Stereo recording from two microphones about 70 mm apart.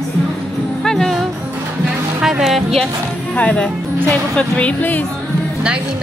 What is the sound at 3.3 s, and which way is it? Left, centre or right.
Speech, centre.